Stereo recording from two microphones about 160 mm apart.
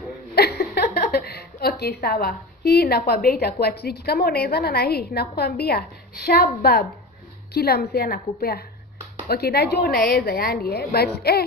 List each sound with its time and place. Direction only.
0.4 s a woman's voice: 90° left; by 6.9 s 70° left (ahead or behind)
7.5 s a woman's voice: 80° left